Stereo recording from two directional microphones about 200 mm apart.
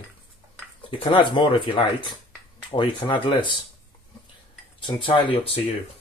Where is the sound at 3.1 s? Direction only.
25° left (ahead or behind).